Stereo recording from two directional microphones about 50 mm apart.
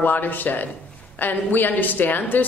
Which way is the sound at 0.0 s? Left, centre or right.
Left.